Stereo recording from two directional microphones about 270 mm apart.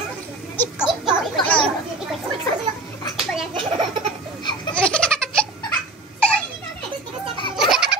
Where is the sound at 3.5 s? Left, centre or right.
Centre.